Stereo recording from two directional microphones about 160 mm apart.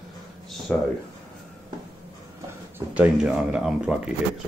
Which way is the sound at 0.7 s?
5° left (ahead or behind).